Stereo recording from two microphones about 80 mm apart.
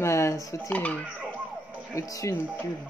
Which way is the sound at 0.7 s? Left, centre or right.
Centre.